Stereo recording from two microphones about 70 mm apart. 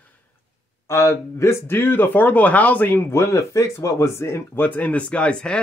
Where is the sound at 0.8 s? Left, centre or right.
Left.